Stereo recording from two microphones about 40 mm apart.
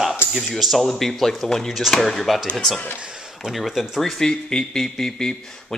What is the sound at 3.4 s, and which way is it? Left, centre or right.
Speech, centre.